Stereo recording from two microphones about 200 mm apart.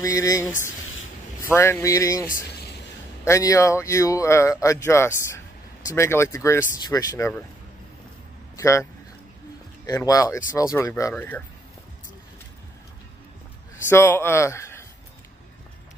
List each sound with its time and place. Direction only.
0.0 s speech: 15° left (ahead or behind)
1.5 s speech: 10° left (ahead or behind)
3.3 s speech: 15° left (ahead or behind)
8.5 s speech: 15° left (ahead or behind)
9.8 s speech: 15° left (ahead or behind)
13.8 s speech: 10° left (ahead or behind)